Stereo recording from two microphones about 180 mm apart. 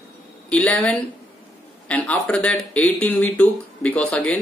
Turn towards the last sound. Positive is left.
turn(degrees=5)  # may be behind; listen again after turning